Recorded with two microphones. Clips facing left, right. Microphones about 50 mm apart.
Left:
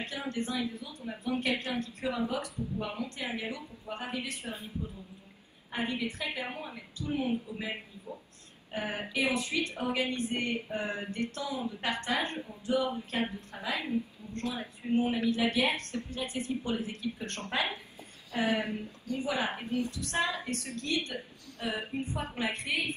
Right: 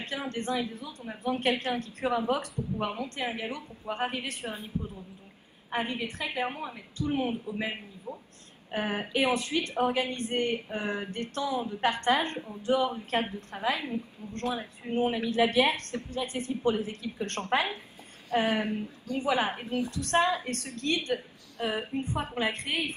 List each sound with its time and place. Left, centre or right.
0.0 s speech: right
5.7 s speech: right
8.7 s speech: right